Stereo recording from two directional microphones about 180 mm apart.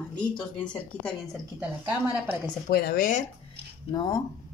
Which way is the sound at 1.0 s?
5° right (ahead or behind).